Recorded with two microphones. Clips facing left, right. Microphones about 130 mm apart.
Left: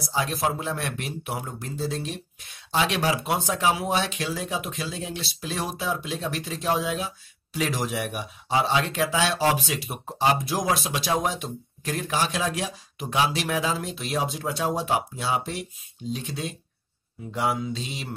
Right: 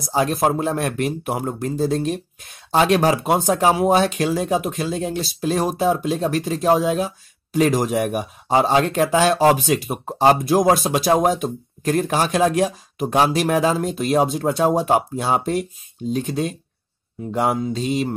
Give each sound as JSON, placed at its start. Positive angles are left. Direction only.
{"t": 0.1, "sound": "speech", "side_deg": -50}